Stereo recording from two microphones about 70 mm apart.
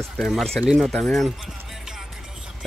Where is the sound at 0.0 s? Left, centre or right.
Centre.